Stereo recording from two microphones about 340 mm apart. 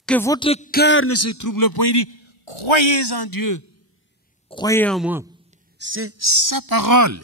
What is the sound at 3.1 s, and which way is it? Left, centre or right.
Speech, left.